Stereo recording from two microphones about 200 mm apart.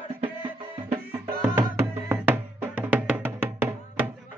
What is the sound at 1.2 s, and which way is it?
Music, 15° right (ahead or behind).